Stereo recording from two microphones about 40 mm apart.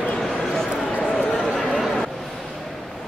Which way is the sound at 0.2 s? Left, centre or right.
Centre.